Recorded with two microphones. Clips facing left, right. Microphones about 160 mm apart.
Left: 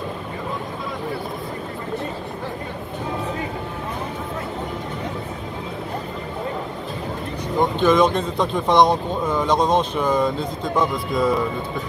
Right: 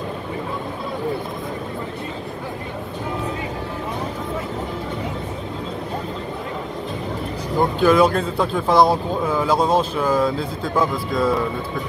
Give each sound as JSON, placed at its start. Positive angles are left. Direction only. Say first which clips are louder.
{"t": 7.5, "sound": "speech", "louder": "right 1 dB", "side_deg": -5}